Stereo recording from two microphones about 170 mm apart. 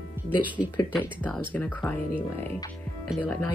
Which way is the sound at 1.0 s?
10° left (ahead or behind).